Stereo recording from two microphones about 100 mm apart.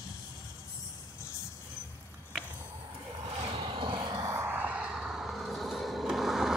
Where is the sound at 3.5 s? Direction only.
55° right (ahead or behind).